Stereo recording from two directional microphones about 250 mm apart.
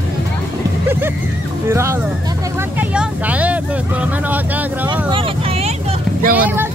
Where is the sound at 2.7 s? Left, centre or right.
Centre.